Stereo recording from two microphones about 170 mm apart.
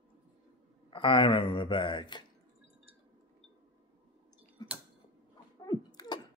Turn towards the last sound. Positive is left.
turn(degrees=25)  # may be behind; listen again after turning